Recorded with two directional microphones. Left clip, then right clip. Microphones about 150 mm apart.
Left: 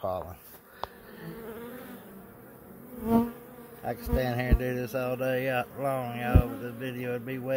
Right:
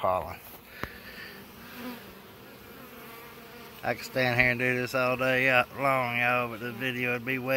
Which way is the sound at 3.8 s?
35° left (ahead or behind).